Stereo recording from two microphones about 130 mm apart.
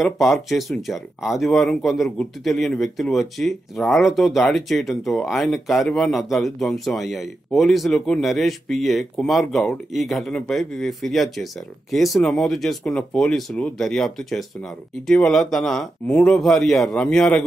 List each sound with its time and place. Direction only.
0.0 s speech: centre (ahead or behind)